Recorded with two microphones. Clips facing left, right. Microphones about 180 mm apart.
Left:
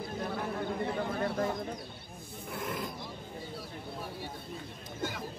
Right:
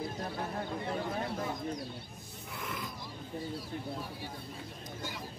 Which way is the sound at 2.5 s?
50° left (ahead or behind).